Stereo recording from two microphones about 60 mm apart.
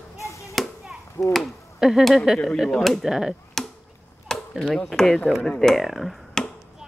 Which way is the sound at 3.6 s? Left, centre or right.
Centre.